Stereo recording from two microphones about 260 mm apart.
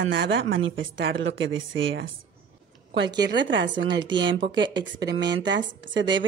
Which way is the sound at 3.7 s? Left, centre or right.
Centre.